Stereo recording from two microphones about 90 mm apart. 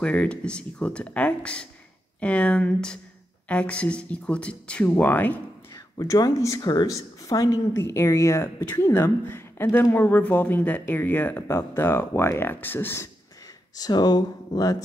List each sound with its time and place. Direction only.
0.0 s speech: 15° left (ahead or behind)
5.9 s a woman's voice: 40° left (ahead or behind); by 13.1 s 25° left (ahead or behind)
13.7 s speech: 45° left (ahead or behind)